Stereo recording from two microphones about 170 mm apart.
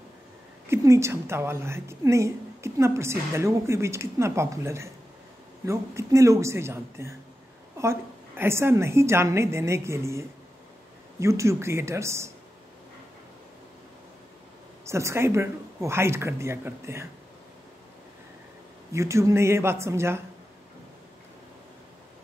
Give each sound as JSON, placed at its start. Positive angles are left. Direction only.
{"t": 0.7, "sound": "a woman's voice", "side_deg": -15}
{"t": 14.9, "sound": "a woman's voice", "side_deg": -15}
{"t": 18.9, "sound": "a woman's voice", "side_deg": -15}